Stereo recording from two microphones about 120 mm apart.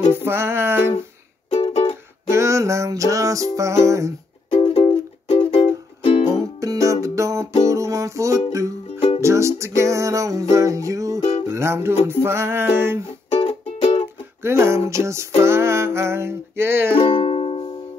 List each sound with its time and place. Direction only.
0.1 s music: 20° right (ahead or behind)
1.5 s music: 65° left (ahead or behind)
2.3 s music: 25° right (ahead or behind)
4.5 s music: 45° left (ahead or behind)
5.5 s music: 60° left (ahead or behind)
6.6 s music: 30° right (ahead or behind)
13.3 s music: 55° left (ahead or behind)
14.4 s music: 20° right (ahead or behind)
16.9 s music: 45° left (ahead or behind)